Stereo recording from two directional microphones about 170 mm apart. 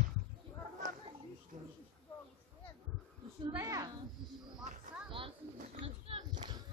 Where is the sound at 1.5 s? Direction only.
50° right (ahead or behind).